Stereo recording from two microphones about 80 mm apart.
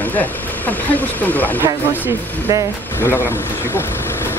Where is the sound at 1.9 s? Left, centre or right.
Right.